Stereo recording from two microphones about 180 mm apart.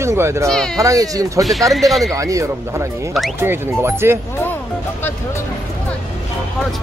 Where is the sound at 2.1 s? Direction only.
15° right (ahead or behind).